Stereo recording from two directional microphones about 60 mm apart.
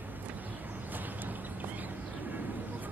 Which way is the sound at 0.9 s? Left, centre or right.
Right.